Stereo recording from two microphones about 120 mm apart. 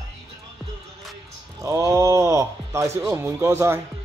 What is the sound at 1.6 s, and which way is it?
Speech, 25° right (ahead or behind).